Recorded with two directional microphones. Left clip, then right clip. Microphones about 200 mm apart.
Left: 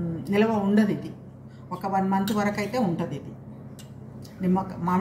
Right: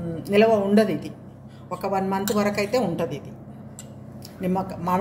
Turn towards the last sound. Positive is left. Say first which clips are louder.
# right 2 dB
turn(degrees=-60)  # may be behind; listen again after turning